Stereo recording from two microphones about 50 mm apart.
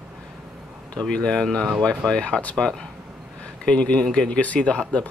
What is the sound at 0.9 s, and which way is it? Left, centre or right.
Speech, left.